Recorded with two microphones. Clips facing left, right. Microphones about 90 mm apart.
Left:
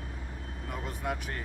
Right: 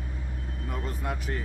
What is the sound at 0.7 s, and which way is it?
Speech, centre (ahead or behind).